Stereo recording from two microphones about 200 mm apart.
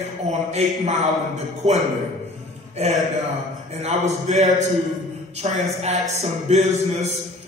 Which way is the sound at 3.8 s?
30° right (ahead or behind).